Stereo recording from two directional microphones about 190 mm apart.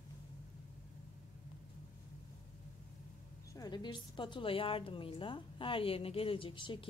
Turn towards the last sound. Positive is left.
turn(degrees=25)  # may be behind; listen again after turning